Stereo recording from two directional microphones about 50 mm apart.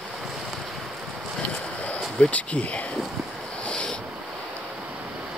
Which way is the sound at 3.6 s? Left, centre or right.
Centre.